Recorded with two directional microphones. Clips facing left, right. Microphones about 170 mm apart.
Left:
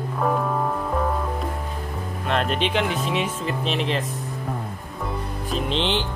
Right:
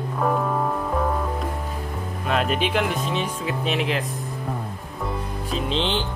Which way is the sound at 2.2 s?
5° right (ahead or behind).